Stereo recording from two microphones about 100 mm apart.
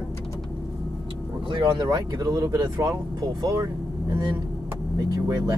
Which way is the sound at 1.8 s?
40° right (ahead or behind).